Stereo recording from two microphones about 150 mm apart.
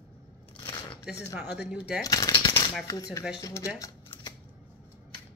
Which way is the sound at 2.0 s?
25° left (ahead or behind).